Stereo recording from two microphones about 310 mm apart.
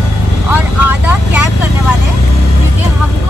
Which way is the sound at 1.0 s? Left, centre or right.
Centre.